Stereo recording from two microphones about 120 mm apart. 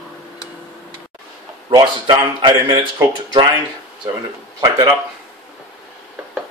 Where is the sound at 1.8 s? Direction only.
40° right (ahead or behind).